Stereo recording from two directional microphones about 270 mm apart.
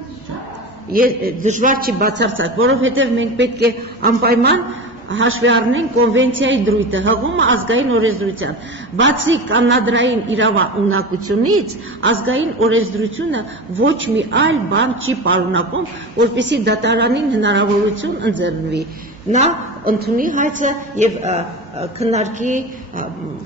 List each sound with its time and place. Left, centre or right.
0.9 s a man's voice: right
19.3 s a woman's voice: right